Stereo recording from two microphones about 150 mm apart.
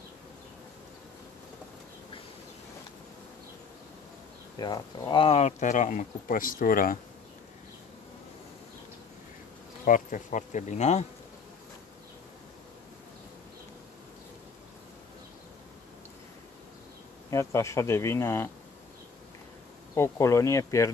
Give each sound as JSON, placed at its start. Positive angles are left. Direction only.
{"t": 4.6, "sound": "speech", "side_deg": 30}
{"t": 9.8, "sound": "speech", "side_deg": 60}
{"t": 17.3, "sound": "speech", "side_deg": 20}
{"t": 19.9, "sound": "speech", "side_deg": 20}